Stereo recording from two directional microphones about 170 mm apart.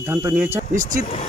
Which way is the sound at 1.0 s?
40° left (ahead or behind).